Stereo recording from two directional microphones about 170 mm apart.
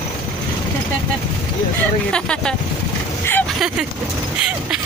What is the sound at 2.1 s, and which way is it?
Speech, 5° left (ahead or behind).